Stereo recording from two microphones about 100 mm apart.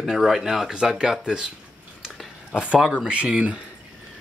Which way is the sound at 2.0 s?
10° right (ahead or behind).